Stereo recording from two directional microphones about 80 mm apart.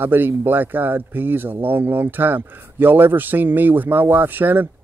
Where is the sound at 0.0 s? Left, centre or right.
Right.